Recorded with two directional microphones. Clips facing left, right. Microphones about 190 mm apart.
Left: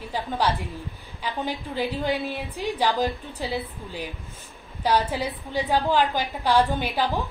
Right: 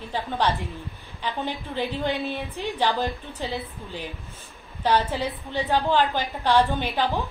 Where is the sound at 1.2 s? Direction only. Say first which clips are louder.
Even; 10° left (ahead or behind).